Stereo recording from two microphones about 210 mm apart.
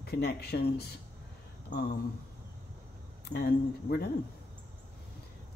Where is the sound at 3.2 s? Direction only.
50° left (ahead or behind).